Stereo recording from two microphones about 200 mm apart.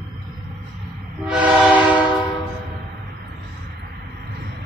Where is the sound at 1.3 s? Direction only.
5° right (ahead or behind).